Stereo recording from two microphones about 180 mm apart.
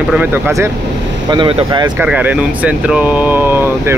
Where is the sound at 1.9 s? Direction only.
10° right (ahead or behind).